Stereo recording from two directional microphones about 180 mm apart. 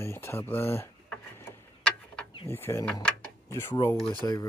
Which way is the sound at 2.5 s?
10° left (ahead or behind).